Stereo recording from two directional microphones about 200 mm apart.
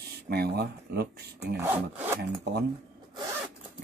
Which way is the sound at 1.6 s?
10° right (ahead or behind).